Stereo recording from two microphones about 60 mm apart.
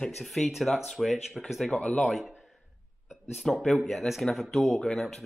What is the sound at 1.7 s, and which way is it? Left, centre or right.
Speech, left.